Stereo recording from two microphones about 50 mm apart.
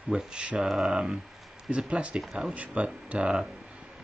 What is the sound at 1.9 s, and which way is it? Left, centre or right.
Speech, right.